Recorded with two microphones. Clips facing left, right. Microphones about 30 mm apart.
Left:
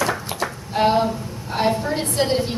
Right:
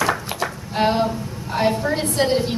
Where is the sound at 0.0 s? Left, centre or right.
Centre.